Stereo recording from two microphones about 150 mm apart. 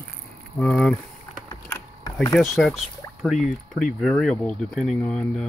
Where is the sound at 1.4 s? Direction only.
20° left (ahead or behind).